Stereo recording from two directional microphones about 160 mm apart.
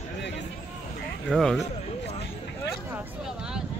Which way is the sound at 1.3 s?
Centre (ahead or behind).